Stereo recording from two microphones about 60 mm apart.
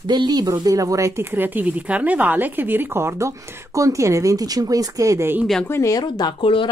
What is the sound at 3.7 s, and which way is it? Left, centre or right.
Speech, right.